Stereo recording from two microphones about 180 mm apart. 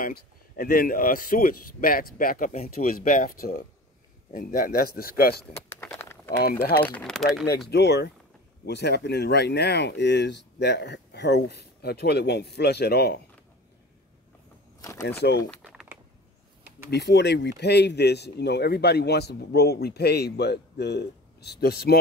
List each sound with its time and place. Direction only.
0.0 s a man's voice: 55° left (ahead or behind)
5.8 s a sound: 15° left (ahead or behind)
6.4 s speech: 60° left (ahead or behind)
6.8 s speech: 5° left (ahead or behind)
7.4 s speech: 65° left (ahead or behind)
14.8 s a sound: 20° left (ahead or behind)
15.0 s speech: 65° left (ahead or behind)
15.5 s typing: centre (ahead or behind)
16.9 s speech: 70° left (ahead or behind)